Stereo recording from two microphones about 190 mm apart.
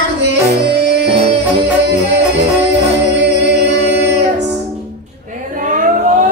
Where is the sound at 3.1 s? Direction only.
60° right (ahead or behind).